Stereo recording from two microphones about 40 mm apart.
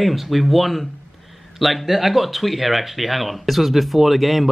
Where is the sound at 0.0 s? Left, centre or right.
Centre.